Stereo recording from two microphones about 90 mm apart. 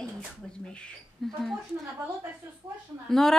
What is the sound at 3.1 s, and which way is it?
Speech, 5° left (ahead or behind).